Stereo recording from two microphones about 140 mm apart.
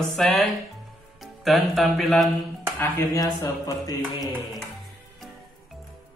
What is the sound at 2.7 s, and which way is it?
Music, 20° left (ahead or behind).